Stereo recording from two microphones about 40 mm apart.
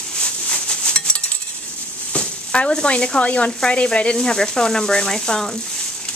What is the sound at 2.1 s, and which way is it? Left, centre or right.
Speech, left.